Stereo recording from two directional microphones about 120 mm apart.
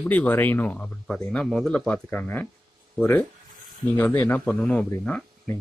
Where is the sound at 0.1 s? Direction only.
15° left (ahead or behind).